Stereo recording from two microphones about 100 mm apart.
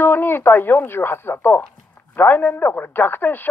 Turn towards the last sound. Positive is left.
turn(degrees=20)  # may be behind; listen again after turning